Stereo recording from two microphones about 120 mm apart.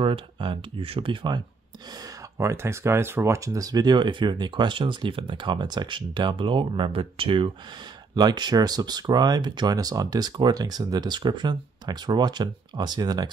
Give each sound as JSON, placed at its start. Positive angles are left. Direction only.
{"t": 0.0, "sound": "speech", "side_deg": -45}
{"t": 2.3, "sound": "speech", "side_deg": -20}
{"t": 8.1, "sound": "speech", "side_deg": -35}